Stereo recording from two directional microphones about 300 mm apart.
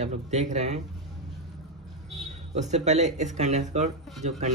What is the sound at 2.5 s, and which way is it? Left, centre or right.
Speech, right.